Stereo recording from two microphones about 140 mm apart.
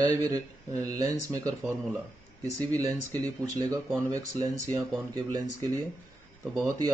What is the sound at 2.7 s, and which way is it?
Speech, 25° right (ahead or behind).